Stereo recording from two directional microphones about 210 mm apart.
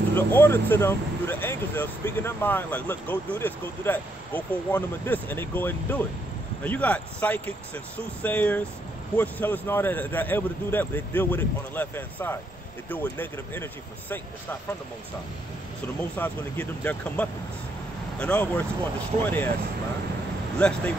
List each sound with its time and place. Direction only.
0.1 s speech: 10° left (ahead or behind)
16.0 s speech: 10° left (ahead or behind)
20.5 s speech: 5° left (ahead or behind)